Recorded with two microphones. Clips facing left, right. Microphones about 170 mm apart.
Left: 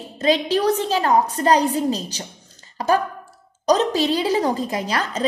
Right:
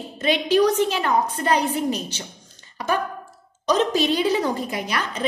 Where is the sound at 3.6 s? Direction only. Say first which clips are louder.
Left 2 dB; 35° left (ahead or behind).